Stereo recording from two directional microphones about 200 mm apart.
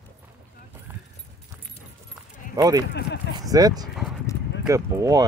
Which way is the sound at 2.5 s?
20° right (ahead or behind).